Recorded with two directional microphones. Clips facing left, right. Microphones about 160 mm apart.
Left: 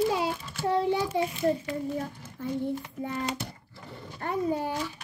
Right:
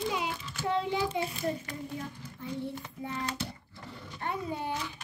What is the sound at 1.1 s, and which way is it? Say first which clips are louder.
Speech: left 5 dB; 35° left (ahead or behind).